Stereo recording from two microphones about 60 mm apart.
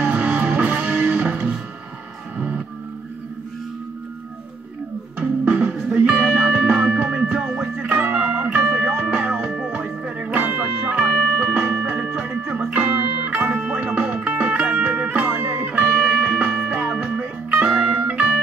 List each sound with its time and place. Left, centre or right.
0.0 s music: right
5.4 s music: right
7.9 s music: right
8.8 s music: right
9.1 s music: right
16.0 s music: centre